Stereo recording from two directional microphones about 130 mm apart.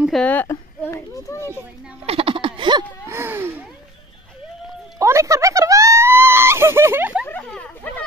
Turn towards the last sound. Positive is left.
turn(degrees=5)  # may be behind; listen again after turning